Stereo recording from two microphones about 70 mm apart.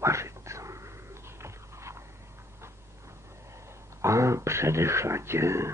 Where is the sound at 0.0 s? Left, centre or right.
Right.